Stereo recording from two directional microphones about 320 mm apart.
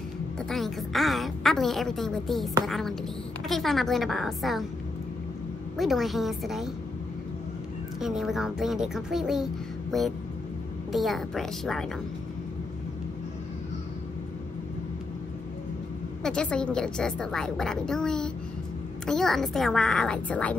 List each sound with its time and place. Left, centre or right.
0.4 s a woman's voice: centre
5.8 s a woman's voice: centre
8.0 s a woman's voice: centre
16.2 s a woman's voice: centre